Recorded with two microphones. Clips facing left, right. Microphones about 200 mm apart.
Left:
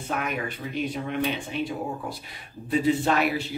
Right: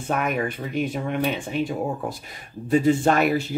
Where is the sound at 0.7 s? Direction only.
50° right (ahead or behind).